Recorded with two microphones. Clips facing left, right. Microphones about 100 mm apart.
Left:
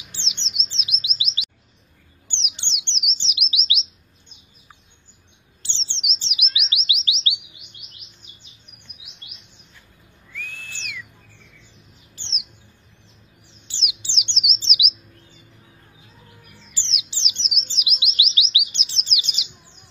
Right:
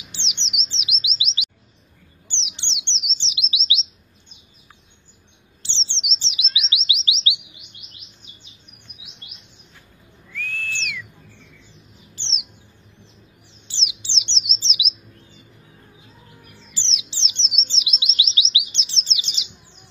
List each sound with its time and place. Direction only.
0.1 s chirp: 20° right (ahead or behind)
2.2 s bird: 25° right (ahead or behind)
5.6 s bird: 25° right (ahead or behind)
6.9 s chirp: 20° right (ahead or behind)
10.3 s whistle: 15° left (ahead or behind)
12.2 s bird: 25° right (ahead or behind)
13.7 s bird: 25° right (ahead or behind)
16.7 s bird: 30° right (ahead or behind)
18.7 s chirp: 30° right (ahead or behind)